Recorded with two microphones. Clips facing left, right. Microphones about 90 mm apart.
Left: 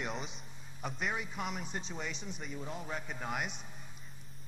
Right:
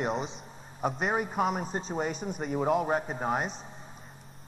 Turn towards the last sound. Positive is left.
turn(degrees=-35)  # may be behind; listen again after turning